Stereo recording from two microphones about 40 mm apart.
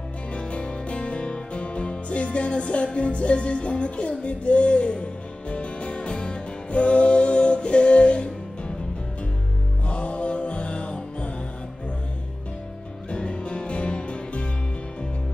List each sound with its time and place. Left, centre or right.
0.3 s music: left
9.8 s music: left
13.1 s music: left